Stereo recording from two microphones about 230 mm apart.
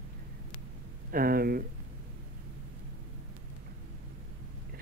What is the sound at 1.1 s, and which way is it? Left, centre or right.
Speech, right.